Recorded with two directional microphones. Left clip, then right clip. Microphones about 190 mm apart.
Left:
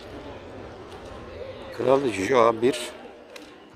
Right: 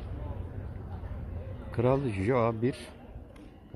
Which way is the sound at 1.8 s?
Centre (ahead or behind).